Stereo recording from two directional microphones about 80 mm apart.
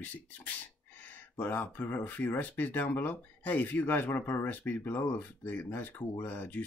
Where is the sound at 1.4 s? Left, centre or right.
Left.